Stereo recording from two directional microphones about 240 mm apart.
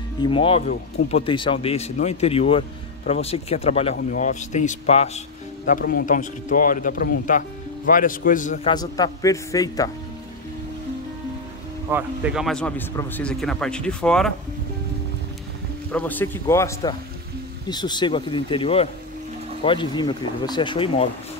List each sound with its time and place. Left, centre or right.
0.2 s speech: left
5.7 s a man's voice: left
8.6 s a man's voice: centre
11.9 s speech: centre
15.9 s a man's voice: centre; by 21.1 s left